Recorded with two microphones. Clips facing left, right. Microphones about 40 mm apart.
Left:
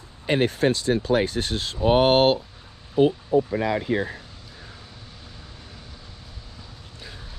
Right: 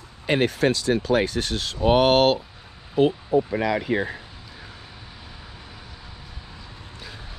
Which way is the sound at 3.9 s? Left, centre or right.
Right.